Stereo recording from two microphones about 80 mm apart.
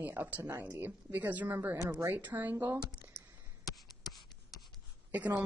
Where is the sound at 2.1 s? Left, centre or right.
Right.